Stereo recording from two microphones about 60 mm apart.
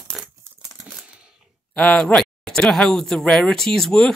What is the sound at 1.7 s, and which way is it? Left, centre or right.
Speech, left.